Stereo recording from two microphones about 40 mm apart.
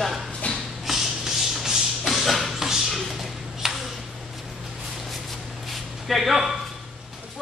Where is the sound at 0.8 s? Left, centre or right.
Centre.